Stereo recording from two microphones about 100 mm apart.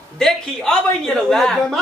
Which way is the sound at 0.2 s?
5° left (ahead or behind).